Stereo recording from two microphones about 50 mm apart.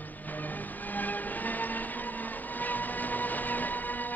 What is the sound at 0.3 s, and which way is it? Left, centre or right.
Train, left.